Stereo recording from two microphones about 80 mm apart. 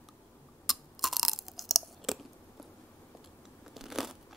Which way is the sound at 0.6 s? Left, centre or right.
Centre.